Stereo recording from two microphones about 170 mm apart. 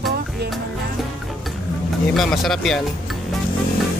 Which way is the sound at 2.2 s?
Centre (ahead or behind).